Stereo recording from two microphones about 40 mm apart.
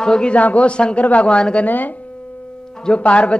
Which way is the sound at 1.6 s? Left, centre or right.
Left.